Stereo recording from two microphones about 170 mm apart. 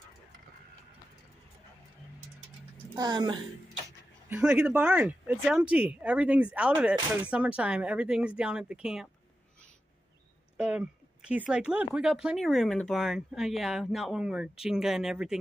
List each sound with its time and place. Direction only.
3.0 s a woman's voice: 25° right (ahead or behind)
4.3 s speech: 5° right (ahead or behind)
10.6 s speech: 5° right (ahead or behind)